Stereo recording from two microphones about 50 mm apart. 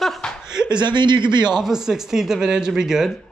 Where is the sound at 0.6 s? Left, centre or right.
Centre.